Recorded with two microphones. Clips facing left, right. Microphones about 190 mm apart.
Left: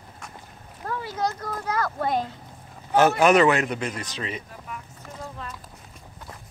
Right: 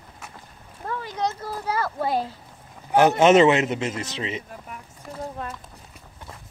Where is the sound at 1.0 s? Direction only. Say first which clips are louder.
Even; 5° left (ahead or behind).